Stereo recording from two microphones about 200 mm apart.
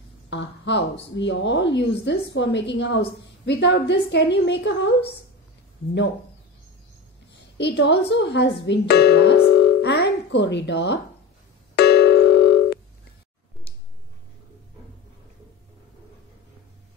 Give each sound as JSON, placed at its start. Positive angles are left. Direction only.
{"t": 0.3, "sound": "a woman's voice", "side_deg": 60}
{"t": 7.5, "sound": "speech", "side_deg": 60}
{"t": 11.7, "sound": "a sound", "side_deg": 55}